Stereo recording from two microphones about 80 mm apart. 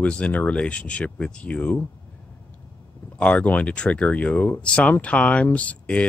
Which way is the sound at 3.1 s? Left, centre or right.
Centre.